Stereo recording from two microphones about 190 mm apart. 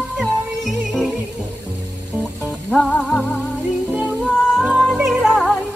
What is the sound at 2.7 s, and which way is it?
Music, 5° left (ahead or behind).